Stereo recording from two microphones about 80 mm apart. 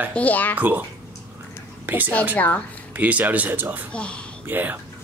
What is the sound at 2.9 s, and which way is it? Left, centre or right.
Speech, right.